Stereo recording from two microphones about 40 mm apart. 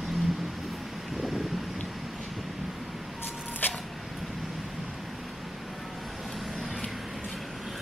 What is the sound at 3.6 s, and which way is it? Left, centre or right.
Single-lens reflex camera, left.